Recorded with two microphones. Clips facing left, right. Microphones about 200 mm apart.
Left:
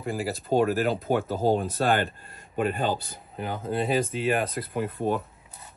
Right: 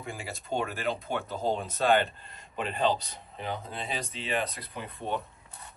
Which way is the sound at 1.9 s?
50° left (ahead or behind).